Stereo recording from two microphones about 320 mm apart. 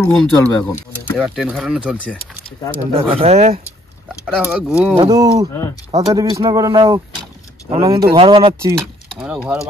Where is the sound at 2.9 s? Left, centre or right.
Centre.